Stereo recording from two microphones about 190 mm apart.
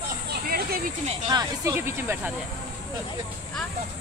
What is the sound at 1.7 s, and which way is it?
Speech, 10° right (ahead or behind).